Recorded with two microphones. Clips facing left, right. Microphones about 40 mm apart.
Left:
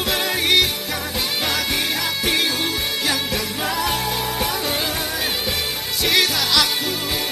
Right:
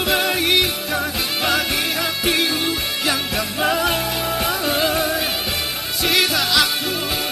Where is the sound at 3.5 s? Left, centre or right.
Right.